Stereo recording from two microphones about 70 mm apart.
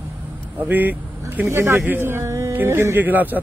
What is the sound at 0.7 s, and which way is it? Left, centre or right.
Speech, right.